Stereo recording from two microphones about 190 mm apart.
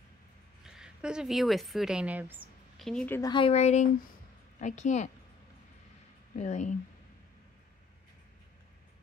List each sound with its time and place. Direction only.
0.7 s a woman's voice: 5° right (ahead or behind)
2.8 s a woman's voice: 5° left (ahead or behind)
3.2 s a woman's voice: 25° left (ahead or behind); by 5.1 s 40° left (ahead or behind)
6.3 s a woman's voice: 40° left (ahead or behind)